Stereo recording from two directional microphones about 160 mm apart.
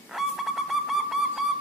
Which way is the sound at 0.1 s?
Centre (ahead or behind).